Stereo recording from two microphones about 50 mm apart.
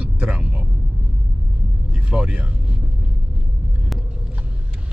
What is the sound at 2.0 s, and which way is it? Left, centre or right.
Vehicle, right.